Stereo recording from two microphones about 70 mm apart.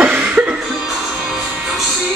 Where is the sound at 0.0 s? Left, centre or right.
Centre.